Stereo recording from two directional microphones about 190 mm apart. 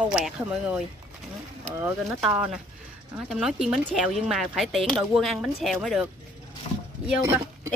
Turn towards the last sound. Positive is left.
turn(degrees=-15)  # may be behind; listen again after turning